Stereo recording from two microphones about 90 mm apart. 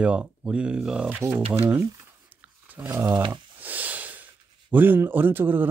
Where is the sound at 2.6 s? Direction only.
20° right (ahead or behind).